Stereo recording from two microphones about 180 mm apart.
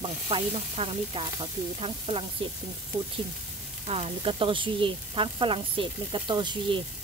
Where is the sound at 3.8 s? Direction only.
35° right (ahead or behind).